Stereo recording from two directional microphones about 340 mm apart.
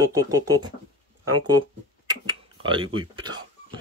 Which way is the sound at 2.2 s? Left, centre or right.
Centre.